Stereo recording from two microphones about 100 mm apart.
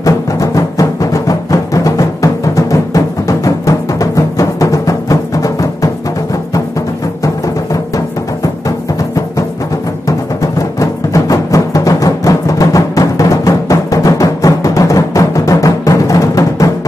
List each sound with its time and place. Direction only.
0.0 s music: 35° left (ahead or behind)
10.0 s music: 35° left (ahead or behind)